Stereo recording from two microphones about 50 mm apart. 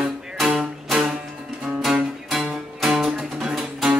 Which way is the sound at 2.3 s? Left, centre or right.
Centre.